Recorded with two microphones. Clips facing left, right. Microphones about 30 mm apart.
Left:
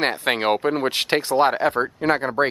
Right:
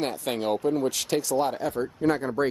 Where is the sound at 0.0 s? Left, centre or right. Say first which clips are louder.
Left 7 dB; left.